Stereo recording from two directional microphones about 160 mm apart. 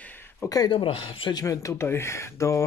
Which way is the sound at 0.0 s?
10° left (ahead or behind).